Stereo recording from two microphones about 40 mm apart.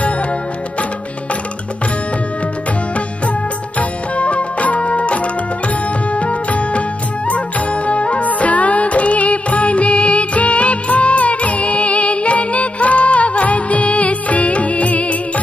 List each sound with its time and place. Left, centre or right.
4.2 s music: left